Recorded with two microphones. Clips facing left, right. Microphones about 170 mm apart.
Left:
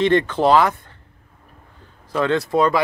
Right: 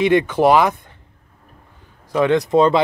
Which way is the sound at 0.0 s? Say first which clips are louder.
Right 2 dB; 10° right (ahead or behind).